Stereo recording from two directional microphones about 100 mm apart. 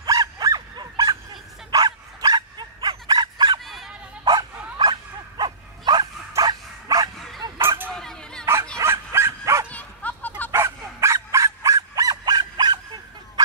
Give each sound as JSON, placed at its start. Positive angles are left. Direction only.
{"t": 0.0, "sound": "dog", "side_deg": -35}
{"t": 3.6, "sound": "dog", "side_deg": 0}
{"t": 4.2, "sound": "dog", "side_deg": -45}
{"t": 6.3, "sound": "bow-wow", "side_deg": -35}
{"t": 7.2, "sound": "bow-wow", "side_deg": 0}
{"t": 7.6, "sound": "a sound", "side_deg": -25}
{"t": 7.9, "sound": "a sound", "side_deg": 5}
{"t": 8.7, "sound": "dog", "side_deg": -25}
{"t": 9.7, "sound": "bow-wow", "side_deg": 15}
{"t": 10.5, "sound": "dog", "side_deg": -25}